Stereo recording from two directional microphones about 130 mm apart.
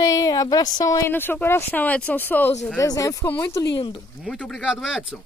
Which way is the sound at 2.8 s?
25° left (ahead or behind).